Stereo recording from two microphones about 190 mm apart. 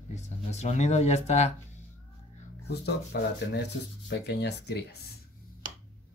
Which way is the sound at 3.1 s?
55° left (ahead or behind).